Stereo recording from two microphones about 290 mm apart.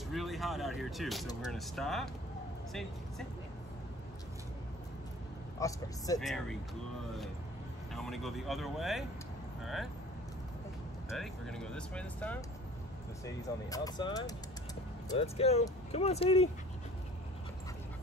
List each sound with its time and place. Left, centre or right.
0.1 s speech: centre
5.6 s speech: centre
7.9 s speech: centre
11.1 s speech: centre; by 16.4 s left